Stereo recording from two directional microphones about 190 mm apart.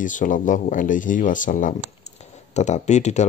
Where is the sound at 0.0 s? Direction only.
45° left (ahead or behind).